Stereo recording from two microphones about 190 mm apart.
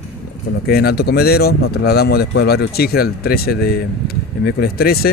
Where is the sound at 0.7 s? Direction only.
55° left (ahead or behind).